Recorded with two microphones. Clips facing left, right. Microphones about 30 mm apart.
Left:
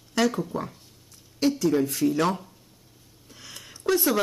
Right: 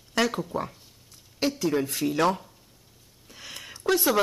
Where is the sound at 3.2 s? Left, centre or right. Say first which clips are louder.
Right 3 dB; right.